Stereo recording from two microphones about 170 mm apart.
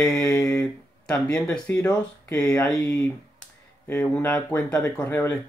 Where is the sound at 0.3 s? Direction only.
20° left (ahead or behind).